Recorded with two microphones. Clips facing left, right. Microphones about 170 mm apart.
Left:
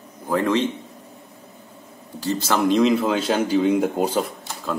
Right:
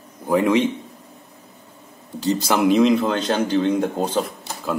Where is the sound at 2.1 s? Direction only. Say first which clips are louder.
Right 2 dB; 15° right (ahead or behind).